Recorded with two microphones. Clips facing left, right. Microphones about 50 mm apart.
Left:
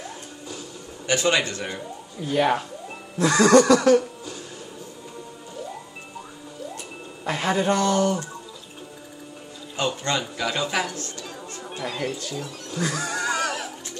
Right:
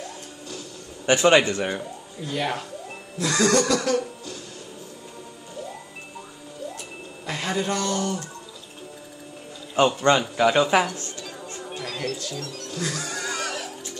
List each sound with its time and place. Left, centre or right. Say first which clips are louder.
1.0 s a man's voice: right 5 dB; right
2.3 s speech: left 6 dB; centre
3.6 s a sound: left 6 dB; centre
7.2 s speech: left 4 dB; centre
9.8 s a man's voice: right 7 dB; right
11.7 s speech: left 2 dB; centre